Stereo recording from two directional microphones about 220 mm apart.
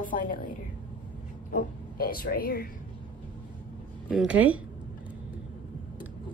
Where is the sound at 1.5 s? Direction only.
40° left (ahead or behind).